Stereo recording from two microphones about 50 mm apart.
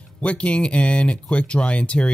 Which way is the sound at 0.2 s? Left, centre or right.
Left.